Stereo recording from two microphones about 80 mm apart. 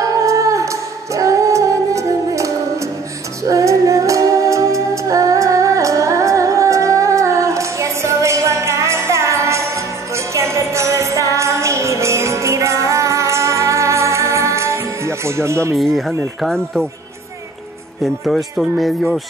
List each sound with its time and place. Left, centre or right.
0.0 s music: right
15.7 s speech: centre
18.0 s speech: centre